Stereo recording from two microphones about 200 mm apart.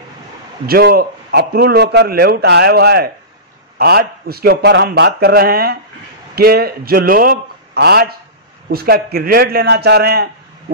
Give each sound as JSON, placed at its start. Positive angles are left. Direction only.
{"t": 0.7, "sound": "a man's voice", "side_deg": -50}